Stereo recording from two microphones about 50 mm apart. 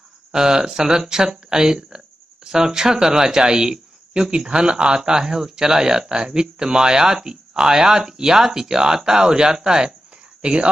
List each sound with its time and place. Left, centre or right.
0.3 s speech: centre